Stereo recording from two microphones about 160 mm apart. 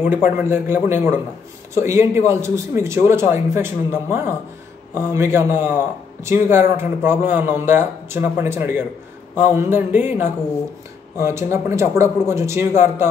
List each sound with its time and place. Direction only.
0.0 s speech: 10° right (ahead or behind)